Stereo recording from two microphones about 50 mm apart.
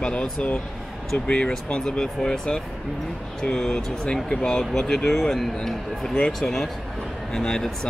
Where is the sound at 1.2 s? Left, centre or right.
Left.